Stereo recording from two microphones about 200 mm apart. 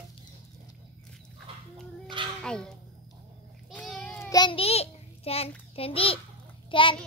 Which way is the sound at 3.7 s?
5° left (ahead or behind).